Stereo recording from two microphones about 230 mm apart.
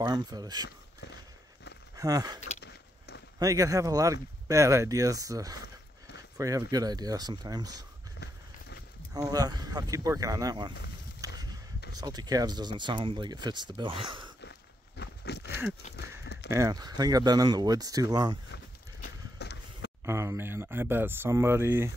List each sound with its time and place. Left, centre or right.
0.0 s speech: centre
2.0 s speech: centre
9.1 s speech: centre
11.1 s a sound: centre
11.9 s speech: centre
15.0 s a sound: left
16.4 s speech: centre
18.5 s a sound: left
20.1 s speech: centre